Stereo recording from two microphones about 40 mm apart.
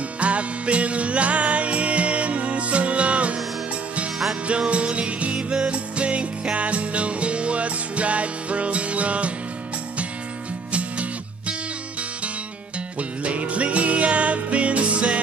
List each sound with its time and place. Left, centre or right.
0.2 s music: right
4.5 s music: right
10.7 s music: right
13.2 s music: right